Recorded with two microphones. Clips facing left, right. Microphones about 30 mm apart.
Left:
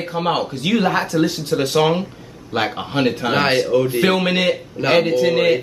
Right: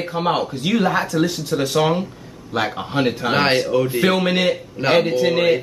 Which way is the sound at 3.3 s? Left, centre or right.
Centre.